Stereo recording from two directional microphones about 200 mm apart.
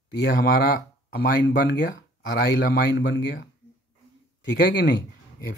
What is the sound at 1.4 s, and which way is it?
Speech, 65° left (ahead or behind).